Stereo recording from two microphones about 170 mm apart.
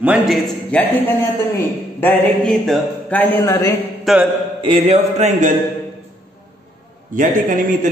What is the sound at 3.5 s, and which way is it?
Speech, 20° left (ahead or behind).